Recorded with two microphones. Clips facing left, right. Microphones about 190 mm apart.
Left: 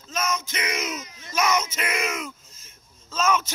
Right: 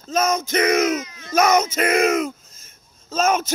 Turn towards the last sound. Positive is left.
turn(degrees=-45)  # may be behind; listen again after turning